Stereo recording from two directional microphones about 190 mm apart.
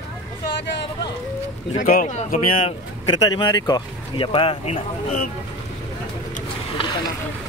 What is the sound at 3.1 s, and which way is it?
Speech, 25° left (ahead or behind).